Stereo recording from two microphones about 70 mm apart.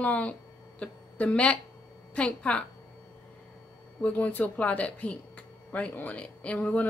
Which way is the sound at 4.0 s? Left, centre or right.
Centre.